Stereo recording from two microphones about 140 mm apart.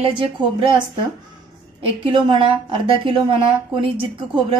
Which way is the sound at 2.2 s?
35° right (ahead or behind).